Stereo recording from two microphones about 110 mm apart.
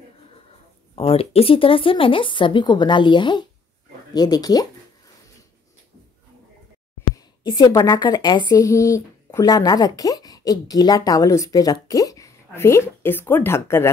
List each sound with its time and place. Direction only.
0.9 s a woman's voice: 60° left (ahead or behind); by 4.6 s 35° left (ahead or behind)
7.4 s a woman's voice: 35° left (ahead or behind)
8.6 s speech: 30° left (ahead or behind)